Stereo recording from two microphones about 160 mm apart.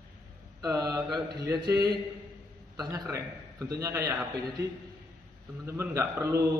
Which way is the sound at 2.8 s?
20° right (ahead or behind).